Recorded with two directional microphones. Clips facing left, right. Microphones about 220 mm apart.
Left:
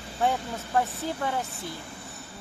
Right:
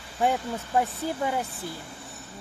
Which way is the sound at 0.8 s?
10° right (ahead or behind).